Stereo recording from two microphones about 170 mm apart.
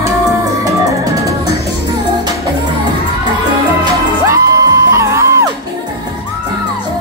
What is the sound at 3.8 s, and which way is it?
Music, 20° right (ahead or behind).